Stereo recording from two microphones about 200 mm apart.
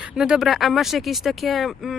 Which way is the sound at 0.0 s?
5° right (ahead or behind).